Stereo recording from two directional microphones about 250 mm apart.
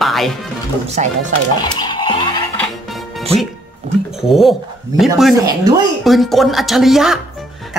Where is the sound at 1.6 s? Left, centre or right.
Centre.